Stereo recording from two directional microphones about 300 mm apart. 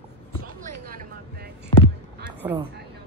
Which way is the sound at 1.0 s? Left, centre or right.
Right.